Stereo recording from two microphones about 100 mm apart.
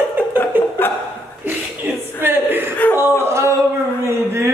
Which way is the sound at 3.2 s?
25° right (ahead or behind).